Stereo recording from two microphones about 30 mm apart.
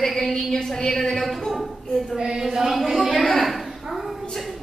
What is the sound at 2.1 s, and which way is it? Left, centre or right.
Speech, right.